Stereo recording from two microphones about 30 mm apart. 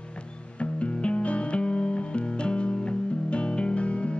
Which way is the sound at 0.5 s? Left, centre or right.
Left.